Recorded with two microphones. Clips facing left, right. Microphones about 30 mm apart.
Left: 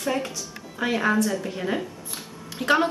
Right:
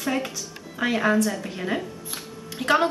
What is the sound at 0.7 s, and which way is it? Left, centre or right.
A woman's voice, centre.